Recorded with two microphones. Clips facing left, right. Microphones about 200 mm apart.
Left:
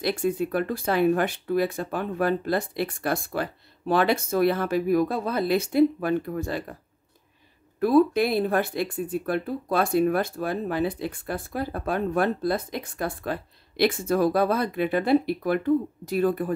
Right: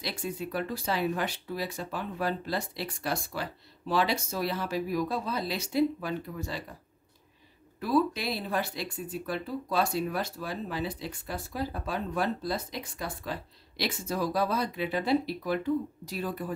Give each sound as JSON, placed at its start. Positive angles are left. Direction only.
{"t": 0.0, "sound": "speech", "side_deg": 55}
{"t": 7.8, "sound": "speech", "side_deg": 55}